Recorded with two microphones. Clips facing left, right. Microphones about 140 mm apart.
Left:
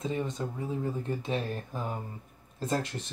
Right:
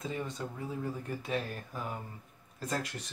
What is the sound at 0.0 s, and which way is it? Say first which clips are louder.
Speech: left 5 dB; 20° left (ahead or behind).